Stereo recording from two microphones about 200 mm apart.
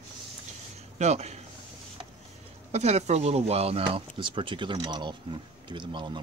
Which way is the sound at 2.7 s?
35° right (ahead or behind).